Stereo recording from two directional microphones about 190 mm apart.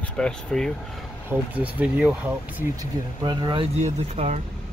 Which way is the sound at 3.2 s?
25° right (ahead or behind).